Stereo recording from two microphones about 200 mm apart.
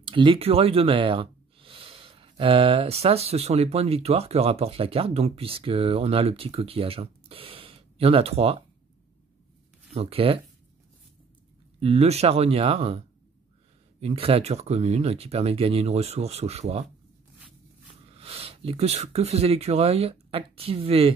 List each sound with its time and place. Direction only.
0.0 s speech: 25° right (ahead or behind)
9.9 s speech: 30° right (ahead or behind)
11.8 s speech: 30° right (ahead or behind)
14.0 s speech: 30° right (ahead or behind)
18.1 s speech: 30° right (ahead or behind)